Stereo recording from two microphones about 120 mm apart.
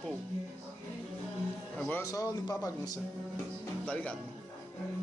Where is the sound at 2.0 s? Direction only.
30° left (ahead or behind).